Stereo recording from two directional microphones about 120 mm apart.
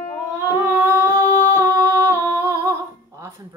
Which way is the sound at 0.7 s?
20° right (ahead or behind).